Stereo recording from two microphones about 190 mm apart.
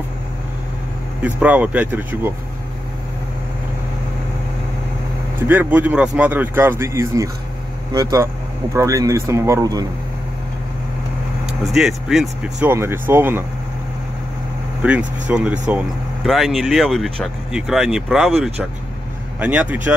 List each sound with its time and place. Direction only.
1.2 s speech: 5° right (ahead or behind)
5.5 s speech: 10° right (ahead or behind)
11.7 s speech: centre (ahead or behind)
12.6 s speech: 10° right (ahead or behind)
14.8 s speech: 5° right (ahead or behind)